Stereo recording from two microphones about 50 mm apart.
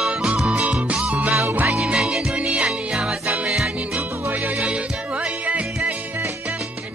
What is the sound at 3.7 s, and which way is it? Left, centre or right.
Music, right.